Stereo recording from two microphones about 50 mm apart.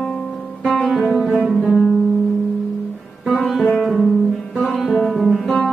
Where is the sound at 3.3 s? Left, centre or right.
Centre.